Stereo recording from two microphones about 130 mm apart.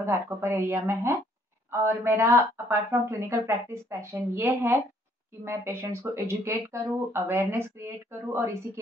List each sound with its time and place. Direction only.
0.0 s speech: 20° right (ahead or behind)